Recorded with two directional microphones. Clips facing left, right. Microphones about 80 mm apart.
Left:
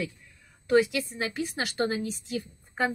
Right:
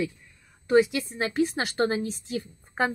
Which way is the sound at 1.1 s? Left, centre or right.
Right.